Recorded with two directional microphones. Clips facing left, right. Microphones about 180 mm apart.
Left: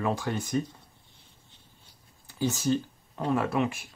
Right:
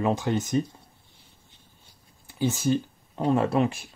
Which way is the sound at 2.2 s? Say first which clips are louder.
Right 2 dB; 15° right (ahead or behind).